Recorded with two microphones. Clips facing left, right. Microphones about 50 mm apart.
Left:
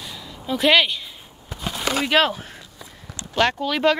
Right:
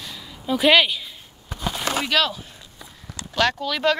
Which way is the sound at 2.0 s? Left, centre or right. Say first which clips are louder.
Left 4 dB; left.